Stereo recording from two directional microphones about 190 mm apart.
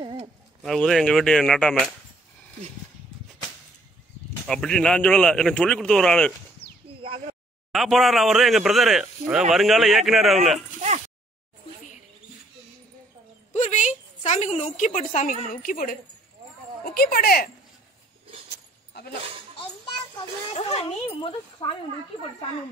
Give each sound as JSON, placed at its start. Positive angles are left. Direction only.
{"t": 0.0, "sound": "bird", "side_deg": -25}
{"t": 0.6, "sound": "speech", "side_deg": 0}
{"t": 4.5, "sound": "speech", "side_deg": 5}
{"t": 7.0, "sound": "a sound", "side_deg": -30}
{"t": 7.7, "sound": "speech", "side_deg": 0}
{"t": 13.5, "sound": "a woman's voice", "side_deg": 40}
{"t": 18.9, "sound": "a sound", "side_deg": 60}
{"t": 20.5, "sound": "speech", "side_deg": 30}